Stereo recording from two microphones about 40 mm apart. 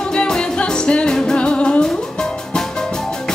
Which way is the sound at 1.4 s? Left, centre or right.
Left.